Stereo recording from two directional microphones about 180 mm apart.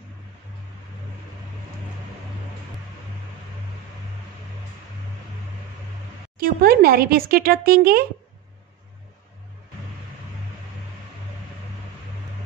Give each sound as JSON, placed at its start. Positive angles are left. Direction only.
{"t": 6.3, "sound": "speech", "side_deg": -55}